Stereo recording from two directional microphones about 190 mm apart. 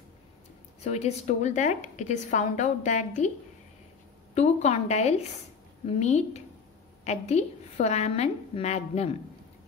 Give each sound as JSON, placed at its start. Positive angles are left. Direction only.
{"t": 0.7, "sound": "a woman's voice", "side_deg": 35}
{"t": 4.4, "sound": "a woman's voice", "side_deg": 35}